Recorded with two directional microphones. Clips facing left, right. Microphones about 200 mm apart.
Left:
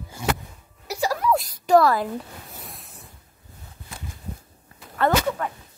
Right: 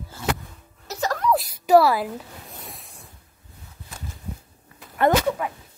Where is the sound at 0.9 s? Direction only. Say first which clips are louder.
Even; 10° left (ahead or behind); by 2.1 s 5° right (ahead or behind).